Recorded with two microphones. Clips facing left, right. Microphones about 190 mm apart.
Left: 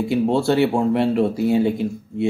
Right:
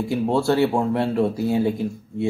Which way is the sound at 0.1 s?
25° left (ahead or behind).